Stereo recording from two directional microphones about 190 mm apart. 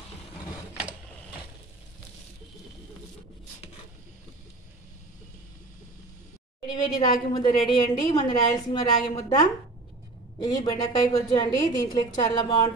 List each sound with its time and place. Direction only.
6.7 s a woman's voice: 20° left (ahead or behind)
10.4 s a woman's voice: 20° left (ahead or behind)